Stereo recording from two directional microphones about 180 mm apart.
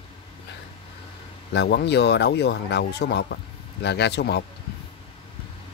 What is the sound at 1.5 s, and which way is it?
Speech, 70° left (ahead or behind).